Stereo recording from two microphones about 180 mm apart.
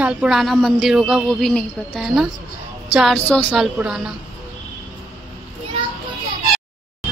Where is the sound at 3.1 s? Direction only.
10° left (ahead or behind).